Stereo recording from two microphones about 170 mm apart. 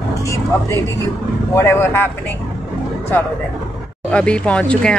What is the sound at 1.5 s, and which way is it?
Speech, 15° left (ahead or behind).